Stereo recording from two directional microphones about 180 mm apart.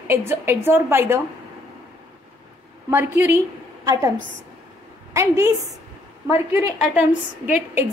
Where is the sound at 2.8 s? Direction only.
10° right (ahead or behind).